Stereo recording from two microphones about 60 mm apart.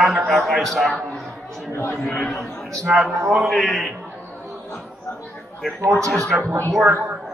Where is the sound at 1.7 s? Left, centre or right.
Left.